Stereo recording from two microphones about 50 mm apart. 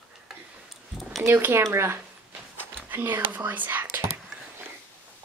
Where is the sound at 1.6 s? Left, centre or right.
Right.